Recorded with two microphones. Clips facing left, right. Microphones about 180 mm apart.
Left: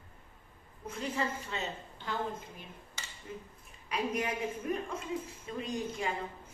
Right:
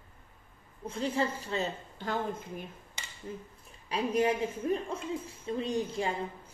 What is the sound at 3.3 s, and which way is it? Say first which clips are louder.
A woman's voice: right 4 dB; 35° right (ahead or behind).